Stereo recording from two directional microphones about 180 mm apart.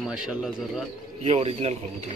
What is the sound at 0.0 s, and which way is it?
Speech, 5° right (ahead or behind).